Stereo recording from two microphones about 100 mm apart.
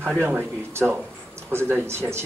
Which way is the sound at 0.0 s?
20° right (ahead or behind).